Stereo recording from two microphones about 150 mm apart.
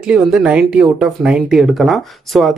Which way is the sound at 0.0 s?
5° right (ahead or behind).